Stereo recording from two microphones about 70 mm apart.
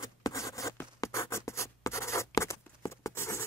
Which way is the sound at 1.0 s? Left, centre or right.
Left.